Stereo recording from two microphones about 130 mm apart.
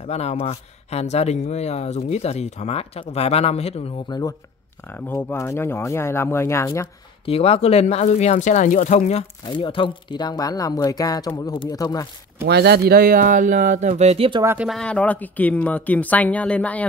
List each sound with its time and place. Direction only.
0.1 s speech: 55° left (ahead or behind)
5.0 s speech: 15° left (ahead or behind)
7.2 s speech: 50° left (ahead or behind); by 9.2 s 65° left (ahead or behind)
9.5 s speech: 40° left (ahead or behind)
13.0 s speech: 90° right; by 14.4 s 45° right (ahead or behind)
14.4 s speech: 15° right (ahead or behind)
14.7 s speech: 5° left (ahead or behind)